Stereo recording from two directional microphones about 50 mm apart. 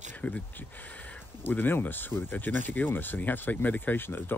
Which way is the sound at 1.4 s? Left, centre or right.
Left.